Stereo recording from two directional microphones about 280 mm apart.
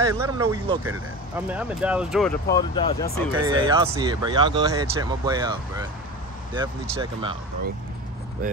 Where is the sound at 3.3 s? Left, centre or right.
Centre.